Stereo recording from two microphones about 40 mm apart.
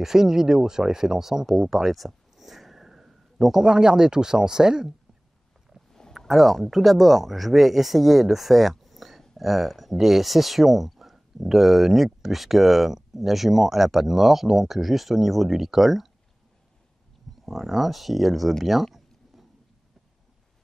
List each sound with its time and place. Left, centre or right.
0.0 s speech: centre
1.4 s a sound: centre
3.6 s speech: centre
5.9 s a sound: centre
6.1 s speech: centre
17.5 s speech: centre
19.3 s vehicle: centre